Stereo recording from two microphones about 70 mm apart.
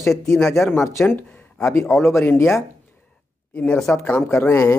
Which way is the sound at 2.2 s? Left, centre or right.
Left.